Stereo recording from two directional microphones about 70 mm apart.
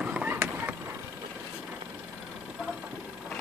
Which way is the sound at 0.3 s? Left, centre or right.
Right.